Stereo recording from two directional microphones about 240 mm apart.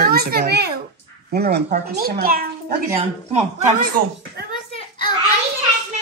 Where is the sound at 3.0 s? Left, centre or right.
Right.